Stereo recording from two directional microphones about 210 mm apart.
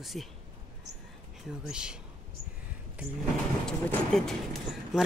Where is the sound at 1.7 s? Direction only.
5° right (ahead or behind).